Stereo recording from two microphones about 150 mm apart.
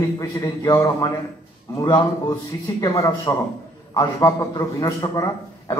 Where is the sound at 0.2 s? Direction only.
25° left (ahead or behind).